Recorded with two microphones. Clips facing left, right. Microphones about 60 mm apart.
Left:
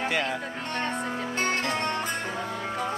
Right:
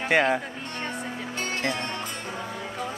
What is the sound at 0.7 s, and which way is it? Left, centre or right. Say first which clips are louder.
Music: left 5 dB; centre.